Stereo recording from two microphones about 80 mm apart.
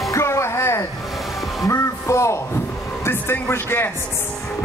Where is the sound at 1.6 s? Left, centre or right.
Left.